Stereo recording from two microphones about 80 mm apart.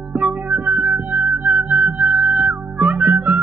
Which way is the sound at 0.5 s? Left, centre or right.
Right.